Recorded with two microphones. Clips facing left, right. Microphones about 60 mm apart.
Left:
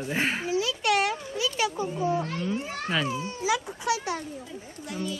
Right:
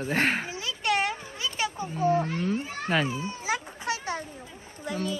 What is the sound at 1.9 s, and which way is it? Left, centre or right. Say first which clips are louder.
Speech: right 6 dB; right.